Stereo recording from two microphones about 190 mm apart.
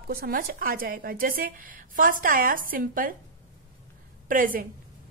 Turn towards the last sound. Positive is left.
turn(degrees=-45)  # may be behind; listen again after turning